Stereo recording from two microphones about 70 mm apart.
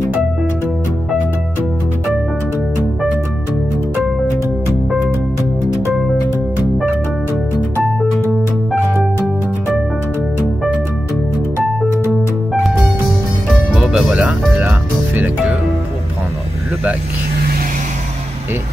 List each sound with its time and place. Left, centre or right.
13.7 s music: centre
14.5 s music: right